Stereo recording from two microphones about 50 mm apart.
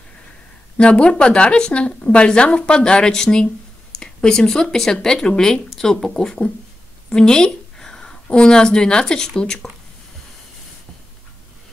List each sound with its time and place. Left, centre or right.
0.7 s a woman's voice: left